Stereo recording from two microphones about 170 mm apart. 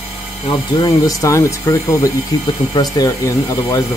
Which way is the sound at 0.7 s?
20° left (ahead or behind).